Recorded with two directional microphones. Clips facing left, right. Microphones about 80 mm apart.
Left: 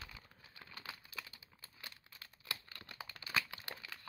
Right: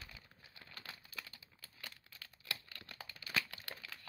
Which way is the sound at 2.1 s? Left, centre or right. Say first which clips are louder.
Even; left.